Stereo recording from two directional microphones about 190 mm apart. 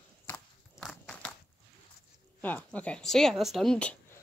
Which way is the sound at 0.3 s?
5° left (ahead or behind).